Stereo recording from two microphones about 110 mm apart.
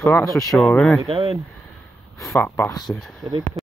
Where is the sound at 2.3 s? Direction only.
20° left (ahead or behind).